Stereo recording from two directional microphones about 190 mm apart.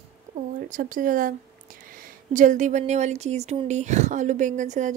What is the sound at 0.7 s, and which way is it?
Speech, 45° right (ahead or behind).